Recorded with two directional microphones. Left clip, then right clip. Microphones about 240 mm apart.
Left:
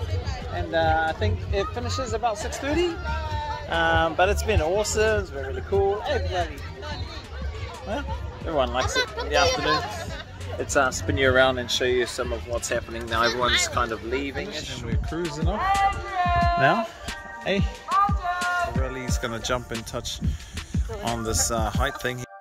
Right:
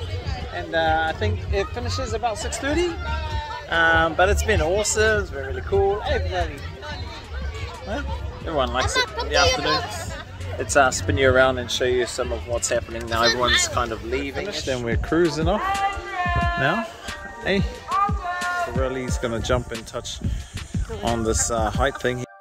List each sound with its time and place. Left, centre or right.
0.6 s speech: centre
3.1 s speech: left
3.7 s speech: centre
5.7 s speech: centre
6.1 s speech: left
8.5 s speech: centre
8.7 s speech: centre
9.5 s a child's voice: right
10.6 s speech: centre
16.2 s music: left
16.5 s speech: centre
17.9 s music: centre
18.4 s speech: centre